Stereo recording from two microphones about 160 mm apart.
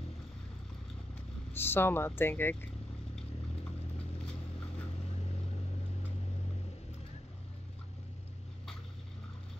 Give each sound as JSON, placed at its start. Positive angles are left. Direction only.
{"t": 1.5, "sound": "speech", "side_deg": 15}
{"t": 4.3, "sound": "vehicle", "side_deg": 5}
{"t": 5.0, "sound": "vehicle", "side_deg": 40}